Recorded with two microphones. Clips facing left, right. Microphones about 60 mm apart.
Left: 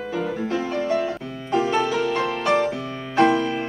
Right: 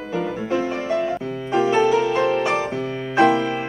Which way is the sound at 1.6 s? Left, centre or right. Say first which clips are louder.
Right 6 dB; centre.